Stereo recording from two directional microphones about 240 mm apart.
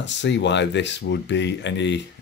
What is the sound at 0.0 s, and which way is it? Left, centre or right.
Speech, left.